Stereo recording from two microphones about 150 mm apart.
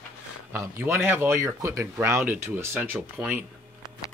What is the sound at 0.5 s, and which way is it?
Speech, 15° right (ahead or behind).